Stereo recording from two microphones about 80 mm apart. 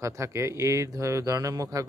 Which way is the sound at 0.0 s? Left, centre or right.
Right.